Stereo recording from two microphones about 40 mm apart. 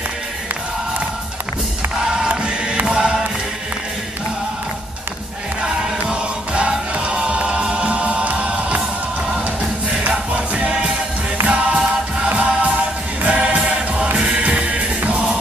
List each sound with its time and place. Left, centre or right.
2.2 s music: right
5.7 s music: centre
6.5 s music: right
10.3 s music: right